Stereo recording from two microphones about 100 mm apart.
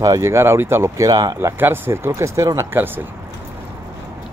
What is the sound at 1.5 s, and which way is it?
Speech, 20° right (ahead or behind).